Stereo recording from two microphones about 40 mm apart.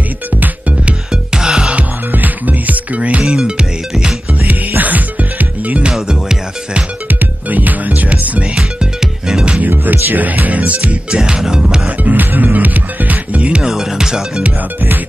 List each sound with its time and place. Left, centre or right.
1.3 s music: centre
2.1 s music: right
3.3 s music: centre
4.5 s music: right
6.0 s music: centre
7.1 s music: right
8.5 s music: centre
9.6 s music: right
11.1 s music: centre
12.0 s music: right
13.6 s music: centre